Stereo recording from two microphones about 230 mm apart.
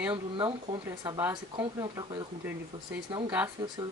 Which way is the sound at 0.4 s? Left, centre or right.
Right.